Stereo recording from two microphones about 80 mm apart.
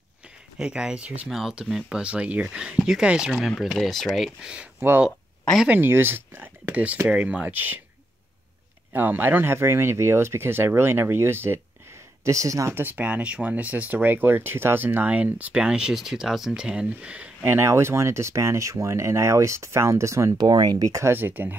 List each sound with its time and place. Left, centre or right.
0.6 s speech: centre
4.4 s speech: centre
4.7 s speech: right
8.9 s speech: right
12.3 s speech: right
12.7 s speech: right
17.5 s speech: right
20.3 s speech: right
20.9 s speech: right